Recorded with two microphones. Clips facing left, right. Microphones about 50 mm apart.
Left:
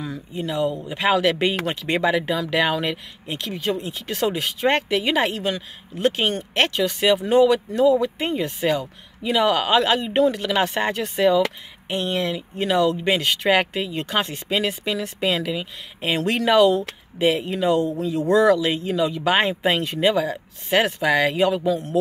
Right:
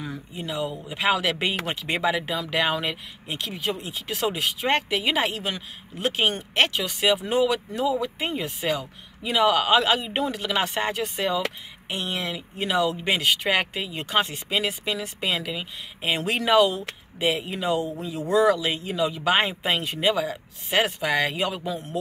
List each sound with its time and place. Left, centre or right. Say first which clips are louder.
0.3 s speech: left 7 dB; centre
21.6 s speech: left 8 dB; centre